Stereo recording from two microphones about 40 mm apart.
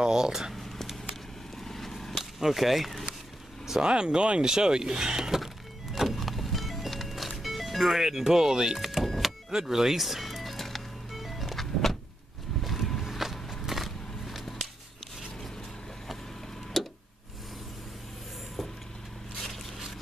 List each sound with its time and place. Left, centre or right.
0.0 s speech: centre
1.6 s vehicle: centre
2.4 s speech: centre
3.8 s speech: right
5.9 s music: centre
8.7 s power windows: centre
9.5 s music: centre
12.6 s vehicle: centre
13.0 s a sound: centre
16.8 s a sound: centre